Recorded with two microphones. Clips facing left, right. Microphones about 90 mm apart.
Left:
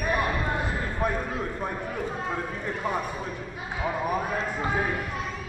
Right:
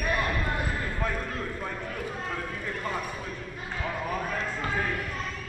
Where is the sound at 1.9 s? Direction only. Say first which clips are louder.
Left 3 dB; 15° left (ahead or behind).